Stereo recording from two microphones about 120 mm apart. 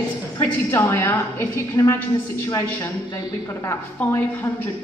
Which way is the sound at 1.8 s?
35° left (ahead or behind).